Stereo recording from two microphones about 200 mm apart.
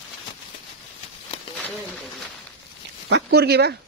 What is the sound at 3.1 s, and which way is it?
Speech, 55° right (ahead or behind).